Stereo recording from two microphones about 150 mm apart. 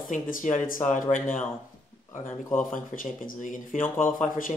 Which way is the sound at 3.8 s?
15° left (ahead or behind).